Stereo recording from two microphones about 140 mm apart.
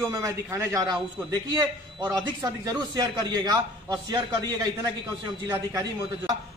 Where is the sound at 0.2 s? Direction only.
20° right (ahead or behind).